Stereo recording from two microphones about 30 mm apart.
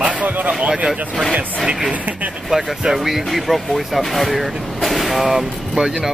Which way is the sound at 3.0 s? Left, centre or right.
Centre.